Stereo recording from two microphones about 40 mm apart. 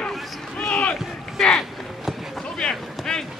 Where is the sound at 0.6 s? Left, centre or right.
Left.